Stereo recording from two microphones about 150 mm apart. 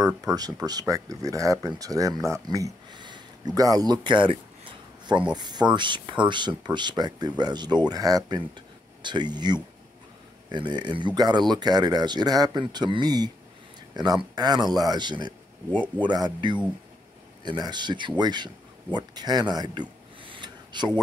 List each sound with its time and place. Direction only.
0.0 s speech: 25° right (ahead or behind)
15.7 s speech: 10° left (ahead or behind)
16.1 s speech: 30° right (ahead or behind)
18.9 s a sound: 30° right (ahead or behind)